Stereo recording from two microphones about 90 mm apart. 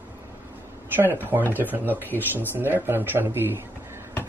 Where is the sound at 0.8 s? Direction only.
25° right (ahead or behind).